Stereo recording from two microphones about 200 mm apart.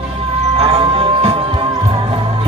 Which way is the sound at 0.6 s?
25° right (ahead or behind).